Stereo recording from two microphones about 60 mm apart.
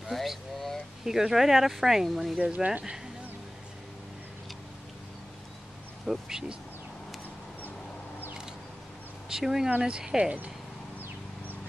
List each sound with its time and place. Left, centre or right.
0.1 s a sound: centre
1.0 s speech: centre
2.4 s speech: centre
6.0 s speech: centre
9.3 s speech: centre